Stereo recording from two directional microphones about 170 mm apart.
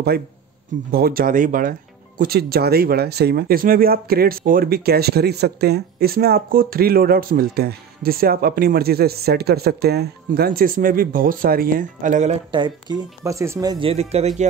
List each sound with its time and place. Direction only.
0.9 s speech: 60° right (ahead or behind)
12.4 s speech: 30° right (ahead or behind)